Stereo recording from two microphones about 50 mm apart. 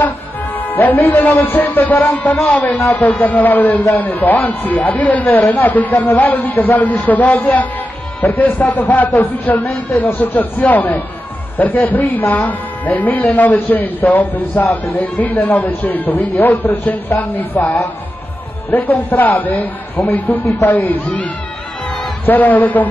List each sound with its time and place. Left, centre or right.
0.6 s a man's voice: left
18.8 s a man's voice: left
20.4 s a man's voice: left
20.8 s a man's voice: left